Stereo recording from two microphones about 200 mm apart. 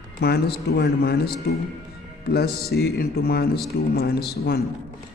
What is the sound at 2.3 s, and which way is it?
A man's voice, 50° left (ahead or behind).